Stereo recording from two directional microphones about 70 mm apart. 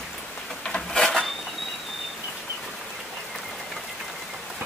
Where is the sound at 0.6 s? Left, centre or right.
Centre.